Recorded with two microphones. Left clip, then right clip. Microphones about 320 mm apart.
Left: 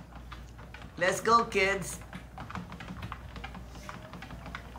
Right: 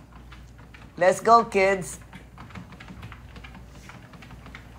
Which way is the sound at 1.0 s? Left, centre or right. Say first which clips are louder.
Right 8 dB; centre.